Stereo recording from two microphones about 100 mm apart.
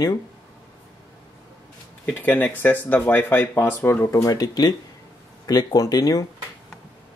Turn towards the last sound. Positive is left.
turn(degrees=40)  # may be behind; listen again after turning